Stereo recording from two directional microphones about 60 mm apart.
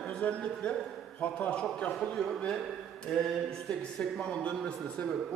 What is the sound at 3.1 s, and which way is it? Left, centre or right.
A man's voice, centre.